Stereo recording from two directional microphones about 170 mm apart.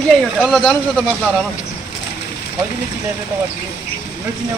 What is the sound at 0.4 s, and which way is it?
Speech, centre (ahead or behind).